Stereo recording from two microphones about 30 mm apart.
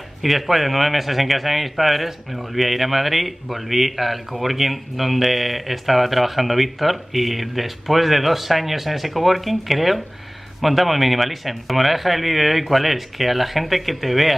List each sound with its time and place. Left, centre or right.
0.2 s speech: centre